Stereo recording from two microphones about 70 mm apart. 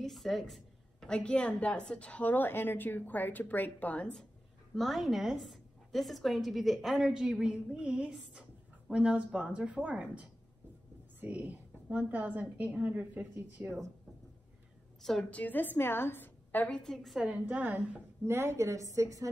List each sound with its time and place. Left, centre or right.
0.0 s a sound: centre
1.0 s a woman's voice: centre
4.7 s a woman's voice: centre; by 13.3 s right
13.3 s speech: right
15.2 s a woman's voice: left
16.6 s a woman's voice: centre
17.2 s a woman's voice: centre
18.2 s a woman's voice: right